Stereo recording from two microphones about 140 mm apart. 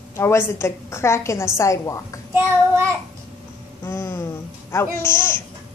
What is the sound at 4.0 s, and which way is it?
A woman's voice, 20° left (ahead or behind).